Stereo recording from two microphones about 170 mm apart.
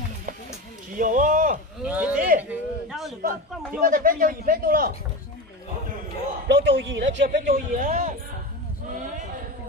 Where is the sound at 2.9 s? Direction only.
Centre (ahead or behind).